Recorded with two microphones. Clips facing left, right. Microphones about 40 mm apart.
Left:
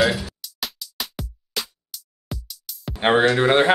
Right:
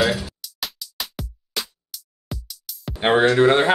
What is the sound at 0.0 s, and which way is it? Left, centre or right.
Music, centre.